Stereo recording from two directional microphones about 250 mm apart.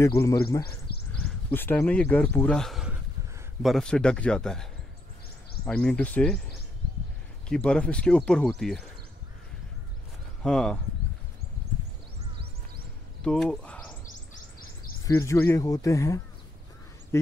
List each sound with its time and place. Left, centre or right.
0.0 s a man's voice: centre
0.9 s a sound: left
1.5 s speech: centre
5.7 s speech: centre
7.4 s speech: centre
10.4 s speech: centre
13.2 s speech: centre
15.0 s a man's voice: centre